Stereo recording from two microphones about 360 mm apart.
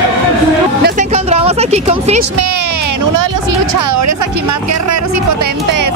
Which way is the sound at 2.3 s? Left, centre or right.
Right.